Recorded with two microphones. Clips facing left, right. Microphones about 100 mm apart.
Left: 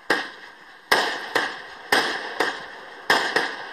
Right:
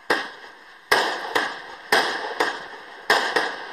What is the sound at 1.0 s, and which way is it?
Fireworks, 30° right (ahead or behind).